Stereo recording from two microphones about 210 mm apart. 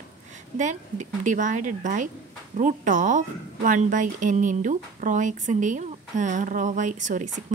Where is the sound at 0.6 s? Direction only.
35° right (ahead or behind).